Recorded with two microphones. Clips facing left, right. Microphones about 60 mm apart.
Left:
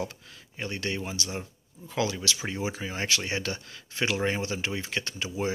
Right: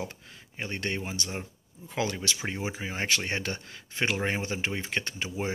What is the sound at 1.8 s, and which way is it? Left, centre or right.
Speech, right.